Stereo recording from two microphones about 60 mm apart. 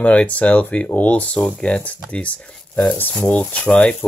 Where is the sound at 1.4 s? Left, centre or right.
Centre.